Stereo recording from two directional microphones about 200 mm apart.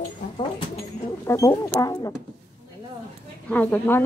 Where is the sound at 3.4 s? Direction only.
10° left (ahead or behind).